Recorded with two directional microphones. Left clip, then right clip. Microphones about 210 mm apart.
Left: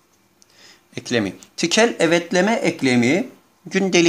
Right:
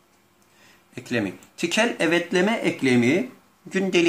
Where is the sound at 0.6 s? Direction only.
45° left (ahead or behind).